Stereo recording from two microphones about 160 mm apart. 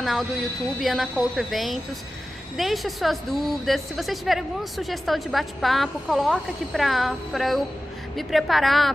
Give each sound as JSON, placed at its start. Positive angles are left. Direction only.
{"t": 0.0, "sound": "a woman's voice", "side_deg": 0}